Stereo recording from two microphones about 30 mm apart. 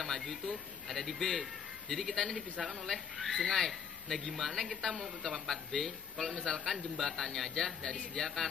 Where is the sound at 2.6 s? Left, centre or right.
Centre.